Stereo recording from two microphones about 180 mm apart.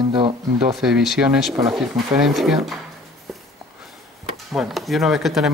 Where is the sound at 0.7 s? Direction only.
Centre (ahead or behind).